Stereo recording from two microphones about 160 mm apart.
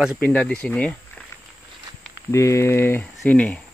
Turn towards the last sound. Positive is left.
turn(degrees=10)  # may be behind; listen again after turning